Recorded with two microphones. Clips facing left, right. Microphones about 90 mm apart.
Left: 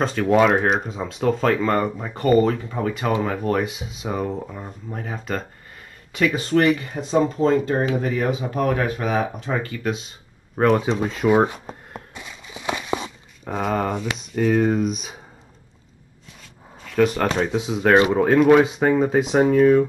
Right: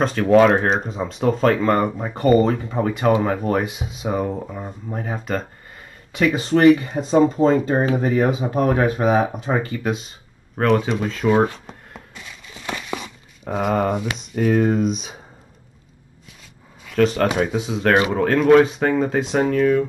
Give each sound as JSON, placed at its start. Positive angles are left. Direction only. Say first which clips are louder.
{"t": 0.0, "sound": "speech", "louder": "right 3 dB", "side_deg": 0}
{"t": 6.6, "sound": "speech", "louder": "right 9 dB", "side_deg": -25}
{"t": 7.2, "sound": "speech", "louder": "right 4 dB", "side_deg": -10}
{"t": 7.6, "sound": "speech", "louder": "right 2 dB", "side_deg": -35}
{"t": 9.6, "sound": "speech", "louder": "right 2 dB", "side_deg": -5}
{"t": 12.2, "sound": "a sound", "louder": "left 2 dB", "side_deg": 15}
{"t": 13.5, "sound": "speech", "louder": "right 3 dB", "side_deg": -5}
{"t": 16.8, "sound": "speech", "louder": "right 1 dB", "side_deg": 5}
{"t": 17.3, "sound": "speech", "louder": "right 1 dB", "side_deg": -5}